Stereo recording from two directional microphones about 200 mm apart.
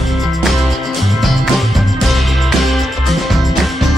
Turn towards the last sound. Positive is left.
turn(degrees=0)  # may be behind; listen again after turning